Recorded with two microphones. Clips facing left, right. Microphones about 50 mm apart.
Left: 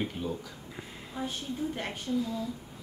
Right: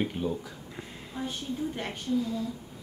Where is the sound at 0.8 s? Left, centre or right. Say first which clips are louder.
Even; centre.